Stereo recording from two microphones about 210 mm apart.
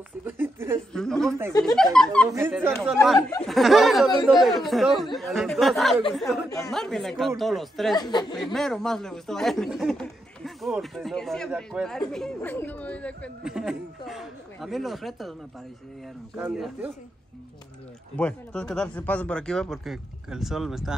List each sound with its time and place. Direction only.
0.2 s speech: 10° right (ahead or behind)
0.9 s speech: centre (ahead or behind)
2.3 s speech: 10° right (ahead or behind)
3.2 s speech: 15° left (ahead or behind)
3.4 s speech: centre (ahead or behind)
7.9 s speech: 20° left (ahead or behind)
8.4 s speech: centre (ahead or behind)
16.3 s speech: 5° right (ahead or behind)
18.1 s speech: 5° left (ahead or behind)